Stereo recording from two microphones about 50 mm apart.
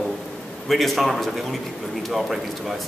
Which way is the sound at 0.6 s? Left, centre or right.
Centre.